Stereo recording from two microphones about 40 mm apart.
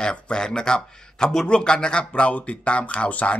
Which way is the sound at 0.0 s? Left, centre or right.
Centre.